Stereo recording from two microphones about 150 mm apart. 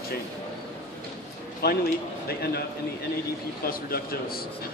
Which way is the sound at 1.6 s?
90° left.